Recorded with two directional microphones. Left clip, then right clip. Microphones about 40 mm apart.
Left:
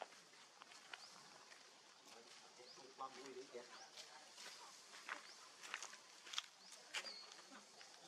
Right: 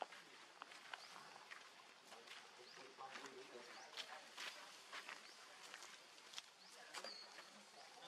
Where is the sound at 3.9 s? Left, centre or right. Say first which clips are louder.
Right 5 dB; right.